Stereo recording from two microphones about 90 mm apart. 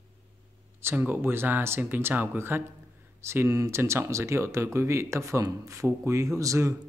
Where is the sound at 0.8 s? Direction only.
25° right (ahead or behind).